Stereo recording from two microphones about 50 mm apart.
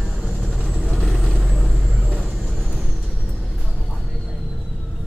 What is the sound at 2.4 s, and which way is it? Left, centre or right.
Vehicle, centre.